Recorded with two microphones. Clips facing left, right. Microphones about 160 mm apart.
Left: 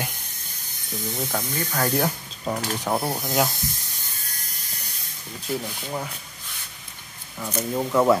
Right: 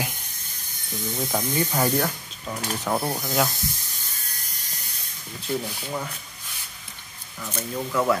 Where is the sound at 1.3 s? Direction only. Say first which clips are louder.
Right 6 dB; 15° right (ahead or behind).